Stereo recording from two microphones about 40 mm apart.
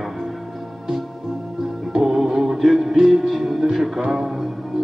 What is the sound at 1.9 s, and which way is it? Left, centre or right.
Music, centre.